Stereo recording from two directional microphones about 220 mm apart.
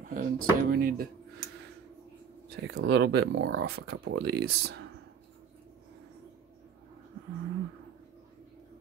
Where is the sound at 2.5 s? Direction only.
50° right (ahead or behind).